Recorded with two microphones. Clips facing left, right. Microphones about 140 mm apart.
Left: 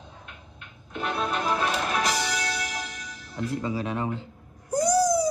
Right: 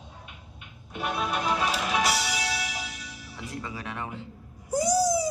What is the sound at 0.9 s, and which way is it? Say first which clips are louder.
Music: left 1 dB; 10° right (ahead or behind).